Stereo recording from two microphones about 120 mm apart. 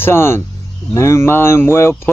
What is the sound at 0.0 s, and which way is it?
Speech, 20° left (ahead or behind).